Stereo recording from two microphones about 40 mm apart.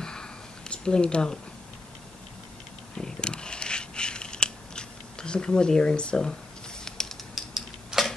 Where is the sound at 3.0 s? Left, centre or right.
Left.